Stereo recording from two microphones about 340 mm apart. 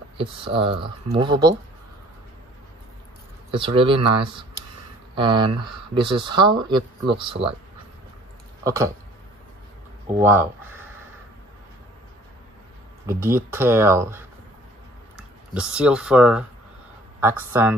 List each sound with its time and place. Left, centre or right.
0.2 s speech: centre
3.5 s speech: centre
8.6 s speech: centre
10.2 s speech: centre
13.0 s speech: centre